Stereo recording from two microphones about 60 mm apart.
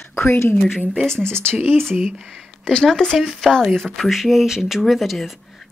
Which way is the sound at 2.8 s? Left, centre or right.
Centre.